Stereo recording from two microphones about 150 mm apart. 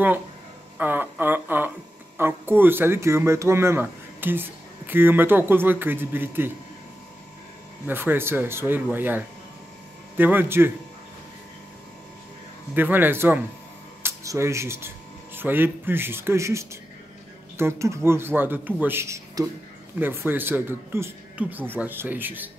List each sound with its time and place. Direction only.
0.7 s a sound: 10° right (ahead or behind)
2.1 s speech: 15° right (ahead or behind)
7.8 s speech: 15° right (ahead or behind)
12.7 s speech: 10° right (ahead or behind)